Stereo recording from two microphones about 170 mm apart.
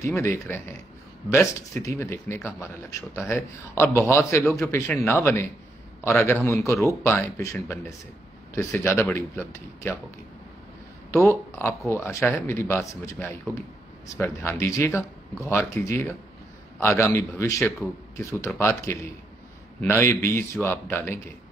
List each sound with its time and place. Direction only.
0.0 s speech: 15° left (ahead or behind)
11.1 s speech: 15° left (ahead or behind)